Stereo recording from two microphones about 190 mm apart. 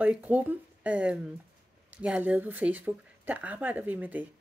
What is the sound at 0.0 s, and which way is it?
A woman's voice, 10° right (ahead or behind).